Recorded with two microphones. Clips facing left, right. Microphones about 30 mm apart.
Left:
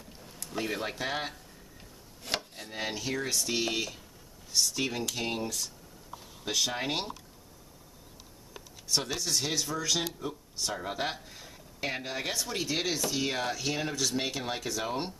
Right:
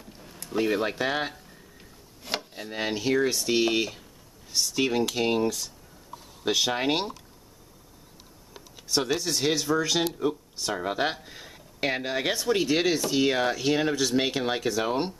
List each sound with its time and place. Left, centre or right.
0.0 s speech: centre
8.7 s speech: centre
10.0 s speech: right